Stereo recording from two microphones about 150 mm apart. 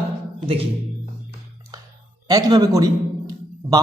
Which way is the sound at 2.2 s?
25° right (ahead or behind).